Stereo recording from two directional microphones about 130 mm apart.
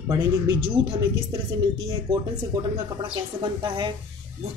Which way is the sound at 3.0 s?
40° right (ahead or behind).